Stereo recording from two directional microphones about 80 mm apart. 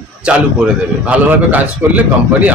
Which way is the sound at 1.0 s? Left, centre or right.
Centre.